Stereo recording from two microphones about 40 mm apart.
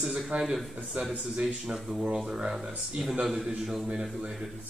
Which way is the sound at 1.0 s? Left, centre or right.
Right.